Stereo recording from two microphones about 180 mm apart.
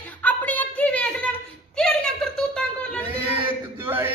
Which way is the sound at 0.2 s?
10° left (ahead or behind).